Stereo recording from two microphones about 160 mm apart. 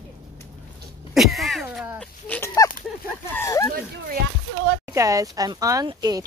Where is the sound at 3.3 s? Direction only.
15° left (ahead or behind).